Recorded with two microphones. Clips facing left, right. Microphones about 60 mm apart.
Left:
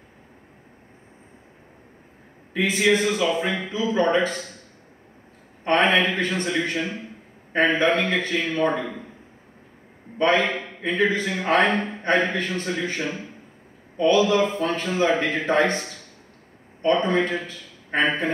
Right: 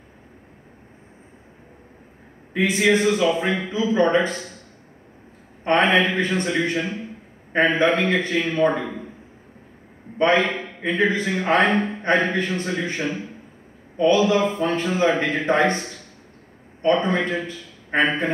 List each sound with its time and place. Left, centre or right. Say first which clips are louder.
2.8 s a man's voice: right 2 dB; centre
5.6 s a man's voice: right 1 dB; centre
10.1 s a man's voice: right 2 dB; centre
12.3 s a man's voice: right 2 dB; centre